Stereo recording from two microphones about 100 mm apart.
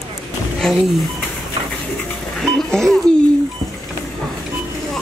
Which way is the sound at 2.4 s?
5° left (ahead or behind).